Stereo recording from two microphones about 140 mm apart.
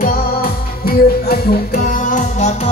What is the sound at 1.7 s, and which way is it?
Music, 65° left (ahead or behind).